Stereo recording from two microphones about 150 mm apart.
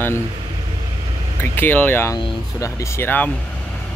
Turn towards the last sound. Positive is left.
turn(degrees=15)  # may be behind; listen again after turning